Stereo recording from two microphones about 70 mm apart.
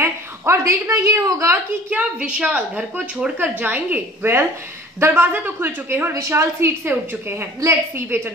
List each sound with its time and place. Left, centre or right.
0.0 s a woman's voice: right
1.9 s a woman's voice: centre
6.1 s a woman's voice: right